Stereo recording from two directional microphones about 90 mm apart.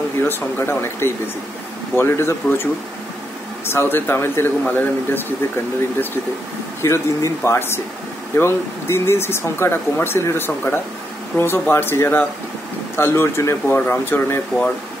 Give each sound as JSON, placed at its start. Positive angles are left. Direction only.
{"t": 0.2, "sound": "speech", "side_deg": 25}
{"t": 6.8, "sound": "speech", "side_deg": 35}